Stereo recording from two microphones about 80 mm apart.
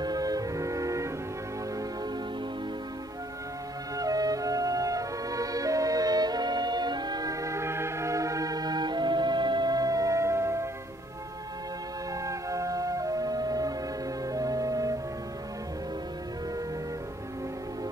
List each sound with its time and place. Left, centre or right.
0.0 s music: right
3.9 s flute: right
12.1 s music: right